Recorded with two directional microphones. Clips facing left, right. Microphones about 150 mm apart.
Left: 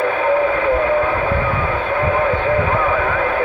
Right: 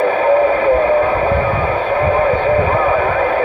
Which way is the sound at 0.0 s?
35° right (ahead or behind).